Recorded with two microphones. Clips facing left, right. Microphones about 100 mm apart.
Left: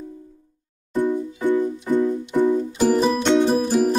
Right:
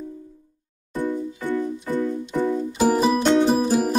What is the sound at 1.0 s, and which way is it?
Music, 20° left (ahead or behind).